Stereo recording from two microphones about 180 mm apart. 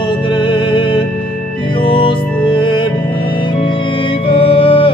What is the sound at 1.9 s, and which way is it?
Music, 30° left (ahead or behind).